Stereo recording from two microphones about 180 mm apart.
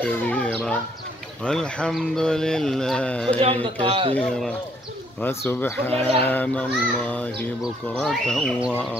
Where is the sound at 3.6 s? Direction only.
30° right (ahead or behind).